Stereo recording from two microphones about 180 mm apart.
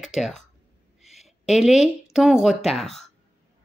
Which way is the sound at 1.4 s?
Centre (ahead or behind).